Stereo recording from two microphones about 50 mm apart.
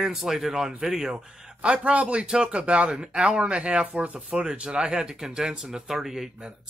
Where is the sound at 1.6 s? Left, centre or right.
Right; by 6.3 s centre.